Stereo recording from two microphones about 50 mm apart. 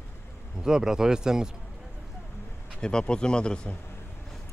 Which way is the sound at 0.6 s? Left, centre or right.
Centre.